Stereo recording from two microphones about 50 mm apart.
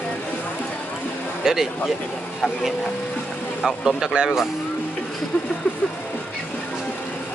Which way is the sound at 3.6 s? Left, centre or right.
Centre.